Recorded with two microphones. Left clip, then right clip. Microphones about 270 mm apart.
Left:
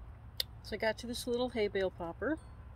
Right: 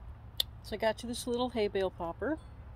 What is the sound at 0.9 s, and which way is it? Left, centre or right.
Speech, centre.